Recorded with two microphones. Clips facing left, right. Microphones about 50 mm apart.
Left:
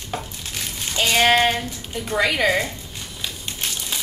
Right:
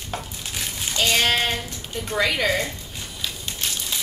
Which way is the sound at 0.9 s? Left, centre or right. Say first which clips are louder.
Left 4 dB; centre.